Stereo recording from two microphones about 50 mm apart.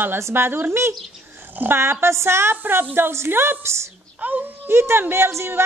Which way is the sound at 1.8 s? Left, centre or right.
Right.